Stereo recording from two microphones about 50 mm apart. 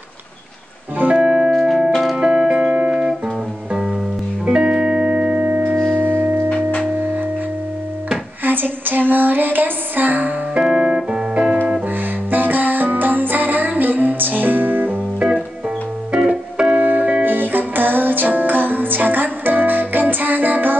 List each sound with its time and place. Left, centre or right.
0.9 s music: right
1.2 s music: centre
1.9 s music: centre
2.1 s music: centre
4.5 s music: centre; by 6.5 s right
8.5 s music: right
10.6 s music: centre
12.3 s music: right
16.1 s music: centre
16.7 s music: right